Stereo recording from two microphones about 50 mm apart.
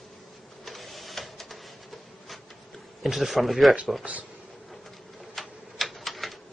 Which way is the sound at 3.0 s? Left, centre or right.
Centre.